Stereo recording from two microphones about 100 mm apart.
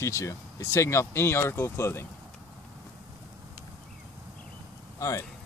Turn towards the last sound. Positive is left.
turn(degrees=35)  # may be behind; listen again after turning